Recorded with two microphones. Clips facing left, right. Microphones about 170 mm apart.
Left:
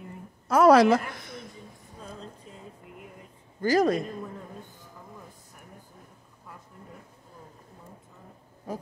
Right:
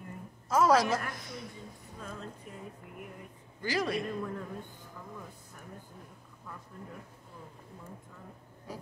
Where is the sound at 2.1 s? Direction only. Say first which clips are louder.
Even; 35° left (ahead or behind).